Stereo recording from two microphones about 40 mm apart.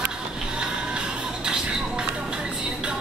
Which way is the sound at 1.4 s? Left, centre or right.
Right.